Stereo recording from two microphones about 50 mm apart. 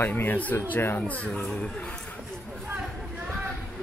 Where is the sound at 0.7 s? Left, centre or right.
Left.